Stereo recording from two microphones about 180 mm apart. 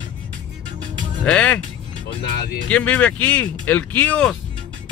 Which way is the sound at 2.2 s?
65° left (ahead or behind).